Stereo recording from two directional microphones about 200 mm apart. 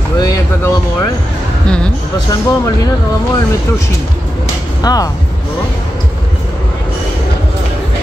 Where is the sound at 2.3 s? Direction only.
15° left (ahead or behind).